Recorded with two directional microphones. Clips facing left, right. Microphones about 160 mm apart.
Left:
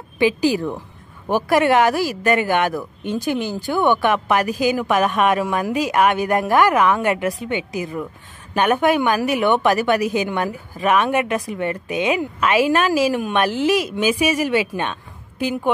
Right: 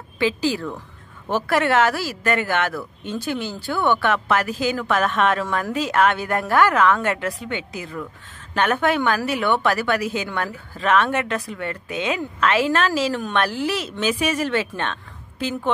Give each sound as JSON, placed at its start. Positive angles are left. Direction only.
{"t": 0.2, "sound": "a woman's voice", "side_deg": 15}